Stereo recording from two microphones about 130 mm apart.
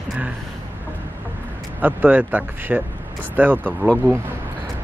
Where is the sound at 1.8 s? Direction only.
10° right (ahead or behind).